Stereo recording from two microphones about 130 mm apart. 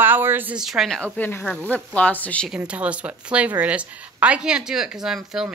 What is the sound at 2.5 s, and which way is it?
Speech, 10° right (ahead or behind).